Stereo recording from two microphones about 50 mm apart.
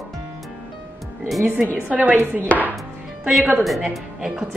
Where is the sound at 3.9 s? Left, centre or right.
Centre.